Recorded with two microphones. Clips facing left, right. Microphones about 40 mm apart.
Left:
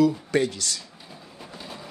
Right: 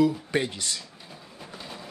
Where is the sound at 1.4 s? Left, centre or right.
Centre.